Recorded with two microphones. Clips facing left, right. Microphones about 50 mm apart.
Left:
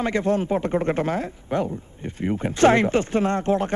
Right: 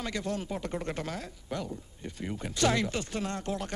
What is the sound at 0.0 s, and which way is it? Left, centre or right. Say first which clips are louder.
Speech: left 12 dB; left.